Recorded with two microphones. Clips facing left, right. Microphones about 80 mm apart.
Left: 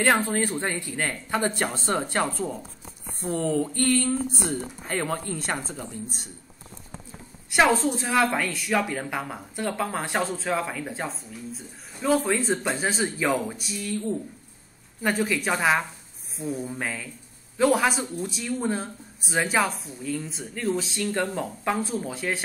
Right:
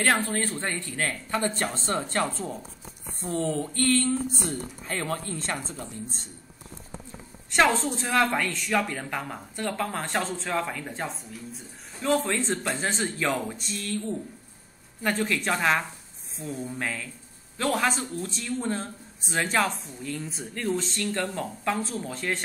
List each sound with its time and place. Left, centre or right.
0.0 s speech: left
3.3 s speech: centre
7.5 s speech: centre
15.0 s speech: centre